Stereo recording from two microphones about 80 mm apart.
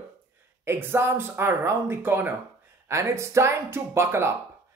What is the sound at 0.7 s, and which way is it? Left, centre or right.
Speech, right.